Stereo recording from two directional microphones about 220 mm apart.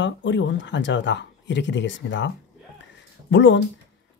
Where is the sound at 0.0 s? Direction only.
55° left (ahead or behind).